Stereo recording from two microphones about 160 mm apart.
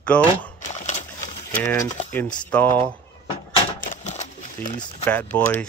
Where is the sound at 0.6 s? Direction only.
45° left (ahead or behind).